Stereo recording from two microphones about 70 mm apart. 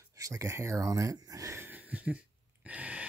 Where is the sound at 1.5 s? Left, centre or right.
Right.